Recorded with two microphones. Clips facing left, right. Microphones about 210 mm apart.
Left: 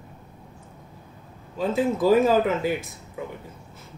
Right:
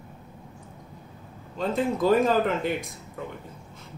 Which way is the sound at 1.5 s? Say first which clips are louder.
Left 2 dB; 5° left (ahead or behind).